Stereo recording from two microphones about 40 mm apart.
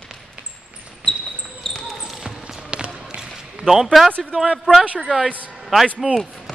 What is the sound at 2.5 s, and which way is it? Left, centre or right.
Basketball bounce, right.